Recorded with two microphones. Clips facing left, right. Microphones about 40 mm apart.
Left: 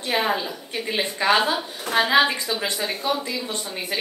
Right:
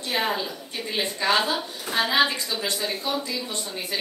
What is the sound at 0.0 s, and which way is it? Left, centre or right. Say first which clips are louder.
A woman's voice: left 3 dB; centre.